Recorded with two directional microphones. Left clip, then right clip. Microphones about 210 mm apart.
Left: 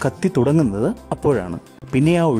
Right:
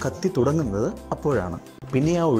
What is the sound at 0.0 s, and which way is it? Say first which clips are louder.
Speech: left 4 dB; 45° left (ahead or behind).